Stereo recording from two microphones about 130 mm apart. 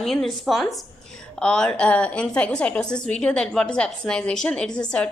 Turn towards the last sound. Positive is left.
turn(degrees=10)  # may be behind; listen again after turning